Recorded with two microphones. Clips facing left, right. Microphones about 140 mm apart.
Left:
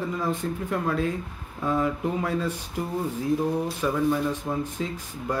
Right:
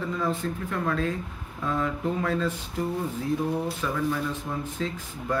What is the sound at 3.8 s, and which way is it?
Speech, 15° left (ahead or behind).